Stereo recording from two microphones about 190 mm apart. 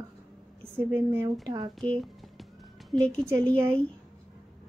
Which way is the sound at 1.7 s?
Centre (ahead or behind).